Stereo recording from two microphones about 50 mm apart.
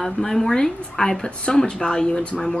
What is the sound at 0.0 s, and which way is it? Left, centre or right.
Speech, centre.